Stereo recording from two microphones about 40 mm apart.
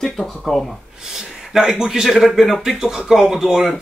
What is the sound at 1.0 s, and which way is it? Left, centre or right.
Speech, centre.